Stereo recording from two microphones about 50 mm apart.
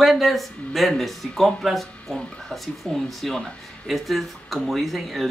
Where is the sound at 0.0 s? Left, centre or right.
Centre.